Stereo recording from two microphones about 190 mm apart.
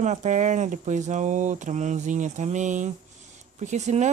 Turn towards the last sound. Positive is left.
turn(degrees=-40)  # may be behind; listen again after turning